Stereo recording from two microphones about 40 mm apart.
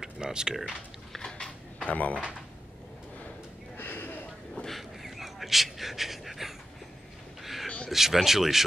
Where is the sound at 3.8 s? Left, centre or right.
Left.